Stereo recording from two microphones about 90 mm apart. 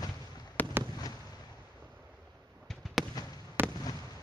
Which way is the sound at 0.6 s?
20° left (ahead or behind).